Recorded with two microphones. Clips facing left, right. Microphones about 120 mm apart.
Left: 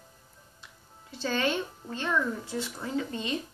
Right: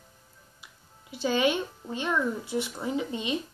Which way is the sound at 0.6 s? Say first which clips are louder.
Even; 10° right (ahead or behind).